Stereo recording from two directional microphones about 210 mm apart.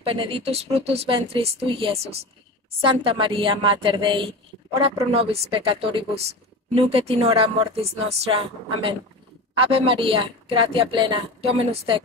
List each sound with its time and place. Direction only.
0.0 s speech: 25° right (ahead or behind)